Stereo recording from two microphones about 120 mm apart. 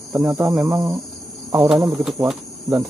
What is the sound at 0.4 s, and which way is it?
Cricket, 20° right (ahead or behind).